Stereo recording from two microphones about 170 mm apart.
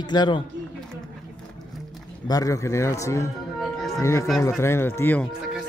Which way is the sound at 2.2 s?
20° left (ahead or behind).